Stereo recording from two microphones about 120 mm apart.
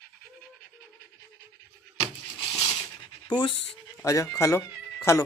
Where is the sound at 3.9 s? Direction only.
25° left (ahead or behind).